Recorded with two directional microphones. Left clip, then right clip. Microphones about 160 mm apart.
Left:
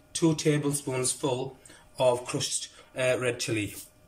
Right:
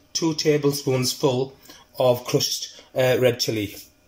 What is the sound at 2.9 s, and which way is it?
Speech, 50° right (ahead or behind).